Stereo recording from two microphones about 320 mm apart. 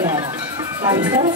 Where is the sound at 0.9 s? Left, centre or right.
Centre.